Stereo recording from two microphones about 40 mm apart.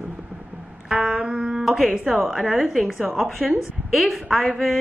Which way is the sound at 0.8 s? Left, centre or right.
Right.